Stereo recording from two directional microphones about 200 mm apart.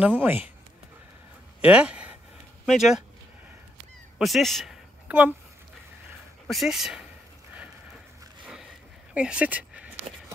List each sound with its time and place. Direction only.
0.0 s speech: 10° right (ahead or behind)
1.6 s speech: 5° right (ahead or behind)
4.2 s a sound: centre (ahead or behind)
6.4 s speech: centre (ahead or behind)
9.1 s speech: 5° right (ahead or behind)